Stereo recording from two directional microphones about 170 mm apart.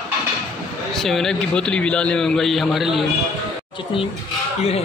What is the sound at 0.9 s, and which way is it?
A man's voice, centre (ahead or behind).